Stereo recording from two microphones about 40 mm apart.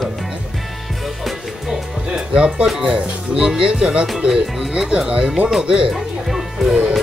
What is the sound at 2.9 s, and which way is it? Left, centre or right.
Speech, centre.